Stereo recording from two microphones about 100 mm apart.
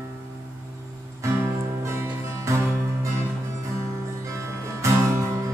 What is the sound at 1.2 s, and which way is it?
Music, 30° right (ahead or behind).